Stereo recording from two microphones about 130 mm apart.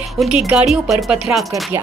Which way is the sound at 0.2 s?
5° right (ahead or behind).